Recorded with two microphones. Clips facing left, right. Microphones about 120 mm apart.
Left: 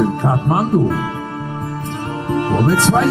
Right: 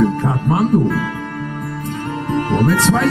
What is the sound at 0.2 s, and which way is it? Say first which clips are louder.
Music: even; 25° left (ahead or behind).